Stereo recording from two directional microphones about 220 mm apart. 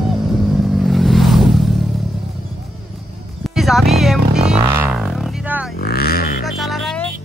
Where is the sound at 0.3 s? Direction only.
Centre (ahead or behind).